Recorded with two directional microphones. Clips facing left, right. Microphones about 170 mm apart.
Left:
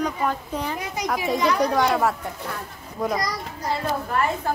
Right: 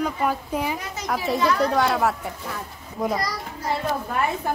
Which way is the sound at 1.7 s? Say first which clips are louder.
Even; centre (ahead or behind).